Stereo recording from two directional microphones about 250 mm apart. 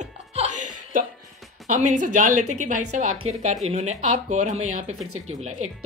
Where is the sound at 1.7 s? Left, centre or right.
Right.